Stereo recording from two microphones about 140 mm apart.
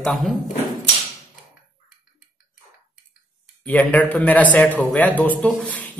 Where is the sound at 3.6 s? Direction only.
10° left (ahead or behind).